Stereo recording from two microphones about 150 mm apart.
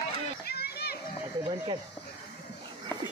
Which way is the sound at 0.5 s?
90° left.